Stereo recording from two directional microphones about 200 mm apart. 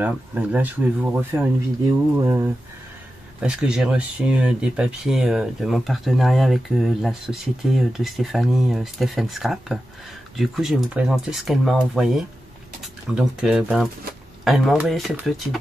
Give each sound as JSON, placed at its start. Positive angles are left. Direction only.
{"t": 0.0, "sound": "speech", "side_deg": -5}